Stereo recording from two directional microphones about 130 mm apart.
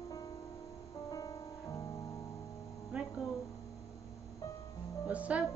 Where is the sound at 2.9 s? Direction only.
10° right (ahead or behind).